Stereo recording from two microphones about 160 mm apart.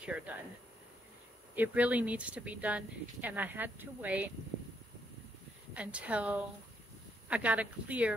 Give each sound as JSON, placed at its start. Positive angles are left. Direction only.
{"t": 0.0, "sound": "speech", "side_deg": -10}
{"t": 1.5, "sound": "speech", "side_deg": -10}
{"t": 5.8, "sound": "speech", "side_deg": -10}